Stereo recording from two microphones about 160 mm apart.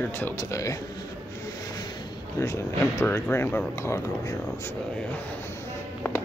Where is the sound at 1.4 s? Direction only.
25° left (ahead or behind).